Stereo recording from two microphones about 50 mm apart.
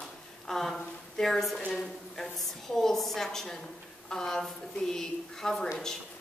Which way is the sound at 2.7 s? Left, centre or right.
Centre.